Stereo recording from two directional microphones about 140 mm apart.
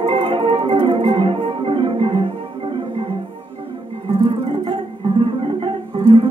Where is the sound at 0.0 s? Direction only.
40° right (ahead or behind).